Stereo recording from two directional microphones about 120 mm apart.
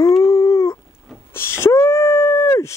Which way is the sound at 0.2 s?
25° left (ahead or behind).